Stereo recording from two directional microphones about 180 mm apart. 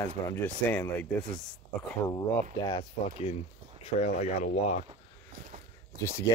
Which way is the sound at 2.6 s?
25° left (ahead or behind).